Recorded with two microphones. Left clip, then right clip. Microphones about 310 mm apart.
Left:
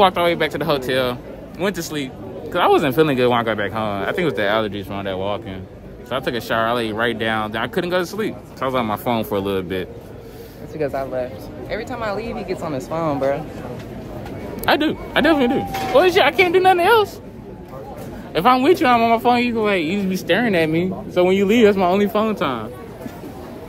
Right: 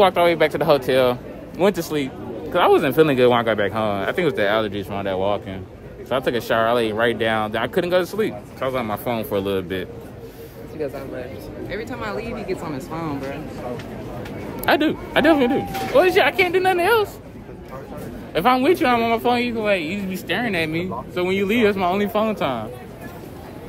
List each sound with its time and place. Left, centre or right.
0.0 s speech: centre
10.8 s speech: left
11.7 s speech: centre
14.6 s speech: centre
18.3 s speech: centre